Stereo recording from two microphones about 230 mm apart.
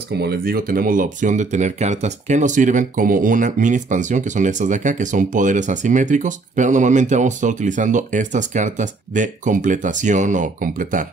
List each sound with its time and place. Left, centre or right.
0.1 s speech: right